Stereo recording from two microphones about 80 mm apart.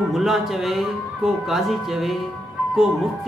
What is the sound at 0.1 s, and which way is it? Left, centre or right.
Speech, centre.